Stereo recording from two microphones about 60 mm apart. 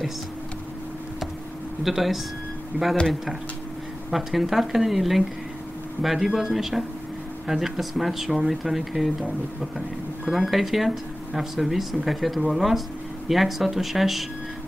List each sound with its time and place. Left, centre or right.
1.8 s speech: centre
2.7 s speech: right
4.1 s speech: centre